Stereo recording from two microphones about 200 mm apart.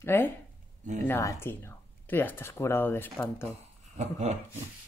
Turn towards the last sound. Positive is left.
turn(degrees=-35)  # may be behind; listen again after turning